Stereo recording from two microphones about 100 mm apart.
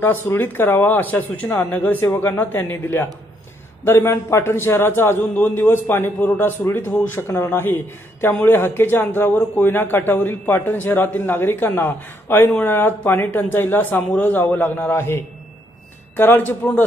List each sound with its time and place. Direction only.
0.0 s a man's voice: 20° left (ahead or behind)